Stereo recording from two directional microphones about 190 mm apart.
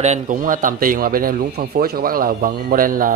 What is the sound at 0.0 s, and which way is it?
Speech, 40° right (ahead or behind).